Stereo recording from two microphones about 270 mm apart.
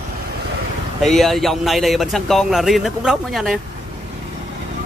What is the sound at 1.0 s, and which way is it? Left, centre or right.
Speech, centre.